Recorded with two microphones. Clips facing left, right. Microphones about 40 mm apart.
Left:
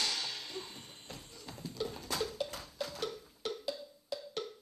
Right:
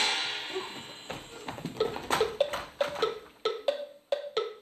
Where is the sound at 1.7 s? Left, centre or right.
Right.